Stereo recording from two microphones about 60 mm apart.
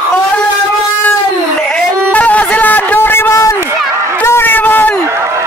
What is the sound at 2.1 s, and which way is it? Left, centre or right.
Music, left.